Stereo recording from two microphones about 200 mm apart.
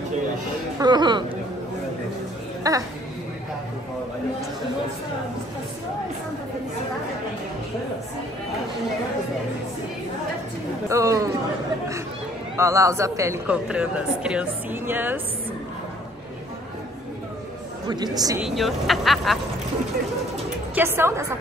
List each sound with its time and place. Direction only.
0.7 s speech: 20° right (ahead or behind)
2.6 s a woman's voice: 15° right (ahead or behind)
10.9 s a woman's voice: 15° right (ahead or behind)
12.5 s a woman's voice: 15° right (ahead or behind)
17.8 s speech: 20° right (ahead or behind)
18.4 s speech: centre (ahead or behind)
20.7 s a woman's voice: 10° right (ahead or behind)